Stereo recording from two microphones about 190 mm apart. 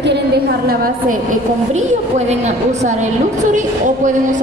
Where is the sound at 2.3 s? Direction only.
35° right (ahead or behind).